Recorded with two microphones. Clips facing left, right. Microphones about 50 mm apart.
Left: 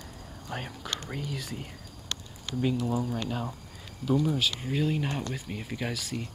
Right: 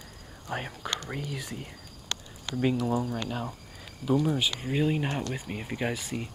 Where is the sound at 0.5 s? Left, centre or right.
Centre.